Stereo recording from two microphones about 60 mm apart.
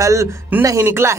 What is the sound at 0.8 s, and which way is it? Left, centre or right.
Speech, right.